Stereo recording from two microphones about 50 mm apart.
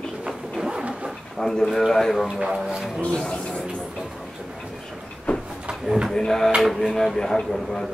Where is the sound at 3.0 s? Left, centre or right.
Centre.